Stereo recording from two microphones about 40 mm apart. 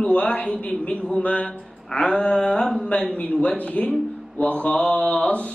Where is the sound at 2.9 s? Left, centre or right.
Left.